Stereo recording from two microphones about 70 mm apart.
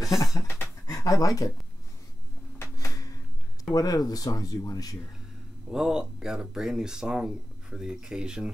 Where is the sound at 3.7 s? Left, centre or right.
Left.